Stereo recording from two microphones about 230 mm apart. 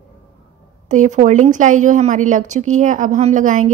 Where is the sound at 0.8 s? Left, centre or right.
Right.